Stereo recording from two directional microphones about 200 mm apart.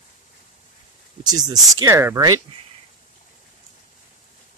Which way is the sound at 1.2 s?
20° right (ahead or behind).